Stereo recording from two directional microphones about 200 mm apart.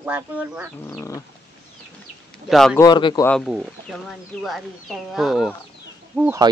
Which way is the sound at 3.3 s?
5° left (ahead or behind).